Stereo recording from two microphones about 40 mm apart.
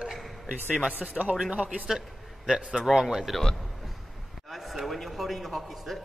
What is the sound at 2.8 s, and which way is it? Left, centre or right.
Speech, centre.